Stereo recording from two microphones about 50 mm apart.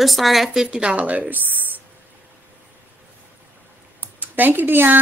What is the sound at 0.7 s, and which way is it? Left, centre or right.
A woman's voice, right.